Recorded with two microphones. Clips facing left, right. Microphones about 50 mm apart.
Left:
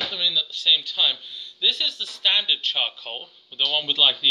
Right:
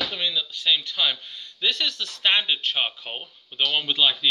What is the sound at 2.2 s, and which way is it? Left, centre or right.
Speech, right.